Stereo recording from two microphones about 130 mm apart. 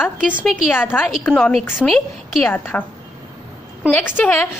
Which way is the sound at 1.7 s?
5° right (ahead or behind).